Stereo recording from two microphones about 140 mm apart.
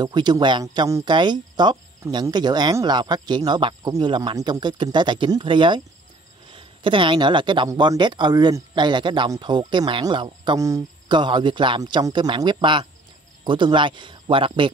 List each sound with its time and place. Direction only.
0.0 s speech: 30° right (ahead or behind)